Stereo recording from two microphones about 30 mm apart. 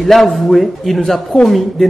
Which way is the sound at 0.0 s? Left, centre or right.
Centre.